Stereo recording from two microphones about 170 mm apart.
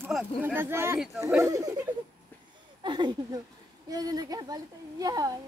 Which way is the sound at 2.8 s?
25° right (ahead or behind).